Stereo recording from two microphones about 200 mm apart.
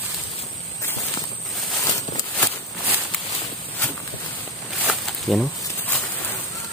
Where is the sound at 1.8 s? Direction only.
15° left (ahead or behind).